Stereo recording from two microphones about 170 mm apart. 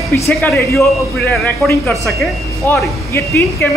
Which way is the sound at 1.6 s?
Centre (ahead or behind).